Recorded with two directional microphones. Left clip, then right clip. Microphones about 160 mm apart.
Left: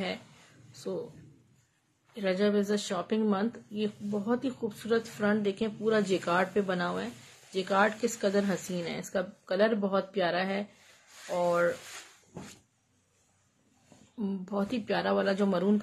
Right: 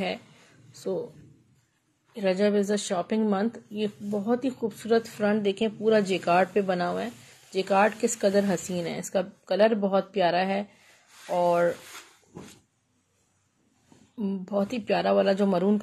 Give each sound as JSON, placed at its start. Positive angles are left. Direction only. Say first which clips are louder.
{"t": 0.7, "sound": "speech", "louder": "right 6 dB", "side_deg": -20}
{"t": 2.1, "sound": "a woman's voice", "louder": "right 4 dB", "side_deg": -20}
{"t": 14.1, "sound": "a woman's voice", "louder": "right 5 dB", "side_deg": -15}